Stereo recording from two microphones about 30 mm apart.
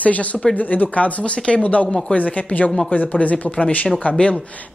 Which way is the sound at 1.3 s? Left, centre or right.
Left.